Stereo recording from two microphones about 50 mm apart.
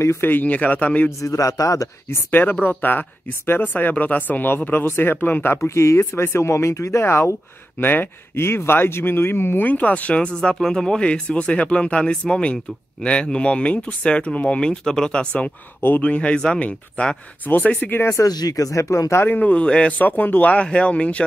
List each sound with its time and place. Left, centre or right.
0.0 s speech: left
0.3 s speech: left
2.8 s speech: left
7.8 s speech: left
8.4 s speech: left
9.7 s speech: left
17.5 s speech: left
17.8 s speech: left
18.7 s speech: left
19.2 s speech: left
20.0 s speech: left
20.5 s speech: left